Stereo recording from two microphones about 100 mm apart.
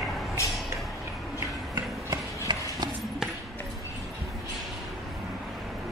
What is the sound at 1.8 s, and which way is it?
Run, 40° right (ahead or behind).